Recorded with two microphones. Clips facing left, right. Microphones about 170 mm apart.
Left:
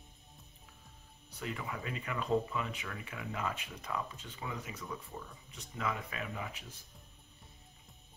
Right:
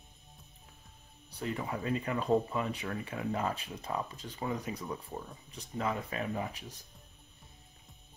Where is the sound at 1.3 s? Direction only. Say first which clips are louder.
Right 5 dB; 35° right (ahead or behind).